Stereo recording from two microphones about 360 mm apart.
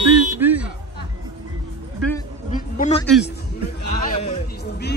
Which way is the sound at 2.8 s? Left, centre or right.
Centre.